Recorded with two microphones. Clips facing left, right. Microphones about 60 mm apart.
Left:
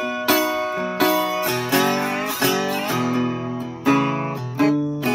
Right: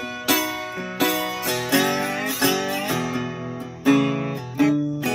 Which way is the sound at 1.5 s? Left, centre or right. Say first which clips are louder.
Right 2 dB; left.